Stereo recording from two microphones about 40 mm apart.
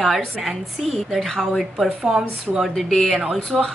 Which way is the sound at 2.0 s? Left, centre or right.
Centre.